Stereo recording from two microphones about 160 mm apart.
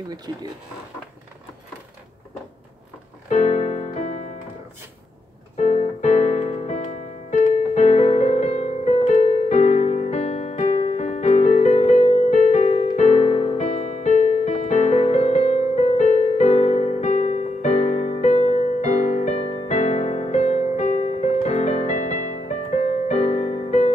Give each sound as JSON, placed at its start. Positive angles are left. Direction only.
{"t": 3.3, "sound": "keyboard", "side_deg": 50}
{"t": 5.6, "sound": "piano", "side_deg": 50}
{"t": 7.2, "sound": "music", "side_deg": 50}